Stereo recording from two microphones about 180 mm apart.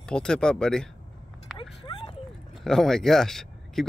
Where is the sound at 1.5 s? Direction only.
25° left (ahead or behind).